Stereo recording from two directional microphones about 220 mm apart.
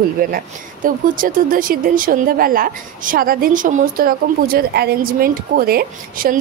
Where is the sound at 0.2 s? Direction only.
40° right (ahead or behind).